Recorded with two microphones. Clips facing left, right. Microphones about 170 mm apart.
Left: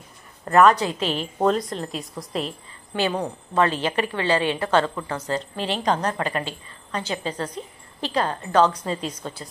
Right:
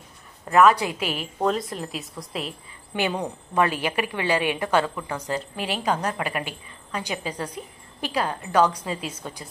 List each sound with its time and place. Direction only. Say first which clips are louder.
0.5 s a woman's voice: left 1 dB; 5° right (ahead or behind)
2.9 s a woman's voice: left 2 dB; 15° right (ahead or behind)